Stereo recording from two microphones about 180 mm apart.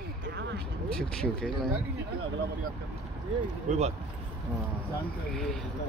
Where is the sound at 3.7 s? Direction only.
35° right (ahead or behind).